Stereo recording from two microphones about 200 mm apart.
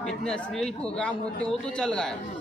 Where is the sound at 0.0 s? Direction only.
5° left (ahead or behind).